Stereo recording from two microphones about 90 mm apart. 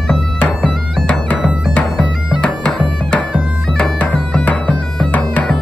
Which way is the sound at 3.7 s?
15° left (ahead or behind).